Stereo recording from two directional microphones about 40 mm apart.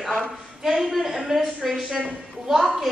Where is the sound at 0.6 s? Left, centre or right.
Centre.